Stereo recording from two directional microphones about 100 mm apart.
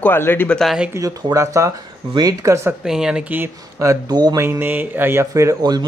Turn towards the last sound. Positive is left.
turn(degrees=-45)  # may be behind; listen again after turning